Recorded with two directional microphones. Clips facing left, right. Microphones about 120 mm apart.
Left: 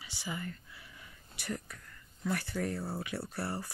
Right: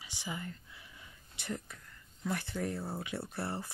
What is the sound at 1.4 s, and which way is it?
Speech, 20° right (ahead or behind).